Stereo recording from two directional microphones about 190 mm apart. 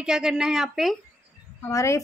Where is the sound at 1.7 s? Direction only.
15° left (ahead or behind).